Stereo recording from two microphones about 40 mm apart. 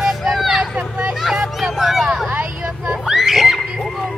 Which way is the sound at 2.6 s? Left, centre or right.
Right.